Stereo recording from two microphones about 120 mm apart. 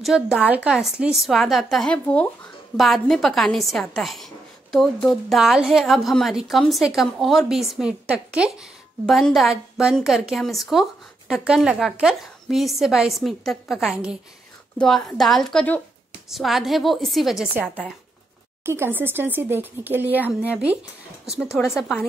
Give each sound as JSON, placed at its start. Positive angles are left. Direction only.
{"t": 0.0, "sound": "a woman's voice", "side_deg": -5}
{"t": 18.6, "sound": "speech", "side_deg": -20}
{"t": 21.6, "sound": "a woman's voice", "side_deg": 5}